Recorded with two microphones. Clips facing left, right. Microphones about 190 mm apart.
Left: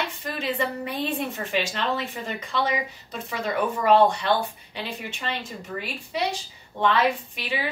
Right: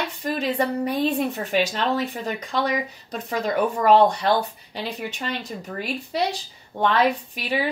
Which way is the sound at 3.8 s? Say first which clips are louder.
Right 2 dB; 40° right (ahead or behind).